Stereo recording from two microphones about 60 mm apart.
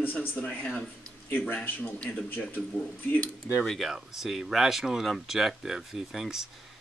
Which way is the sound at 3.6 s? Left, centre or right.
Centre.